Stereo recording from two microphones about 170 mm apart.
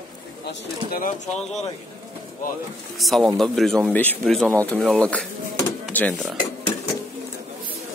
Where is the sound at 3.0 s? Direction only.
Centre (ahead or behind).